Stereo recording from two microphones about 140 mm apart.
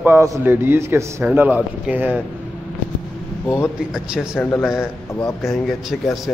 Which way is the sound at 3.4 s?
20° left (ahead or behind).